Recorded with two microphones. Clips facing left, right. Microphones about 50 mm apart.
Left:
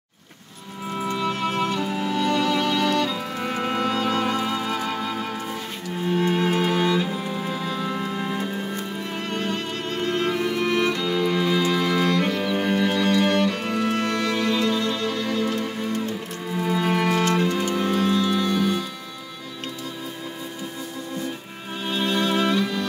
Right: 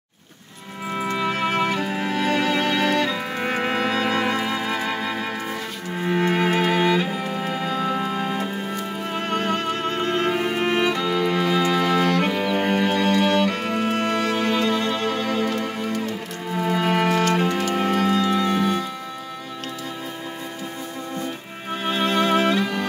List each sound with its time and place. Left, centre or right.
0.9 s music: right
7.2 s music: right
7.9 s organ: right
8.3 s music: right
12.3 s music: centre
12.5 s music: right
21.8 s music: right